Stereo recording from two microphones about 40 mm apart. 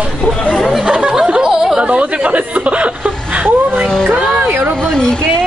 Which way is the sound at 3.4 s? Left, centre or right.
Right.